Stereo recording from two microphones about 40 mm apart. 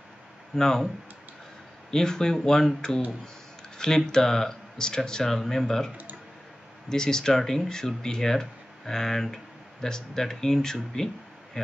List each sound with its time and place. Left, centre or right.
0.6 s speech: centre
1.9 s speech: centre
6.9 s speech: centre
11.6 s a sound: centre